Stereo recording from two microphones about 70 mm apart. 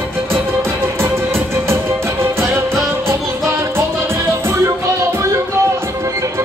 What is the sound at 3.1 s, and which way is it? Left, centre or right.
Music, right.